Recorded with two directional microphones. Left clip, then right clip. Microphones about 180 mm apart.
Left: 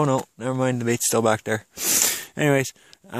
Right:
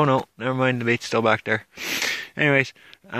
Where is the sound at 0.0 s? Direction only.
25° left (ahead or behind).